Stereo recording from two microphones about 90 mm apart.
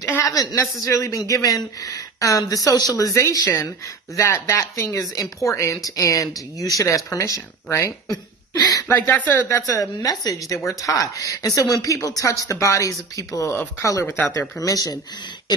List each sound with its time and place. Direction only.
0.0 s a man's voice: 35° left (ahead or behind)
8.8 s speech: 30° left (ahead or behind)
9.5 s a man's voice: 40° left (ahead or behind)
13.5 s speech: 25° left (ahead or behind)
13.8 s a man's voice: 40° left (ahead or behind)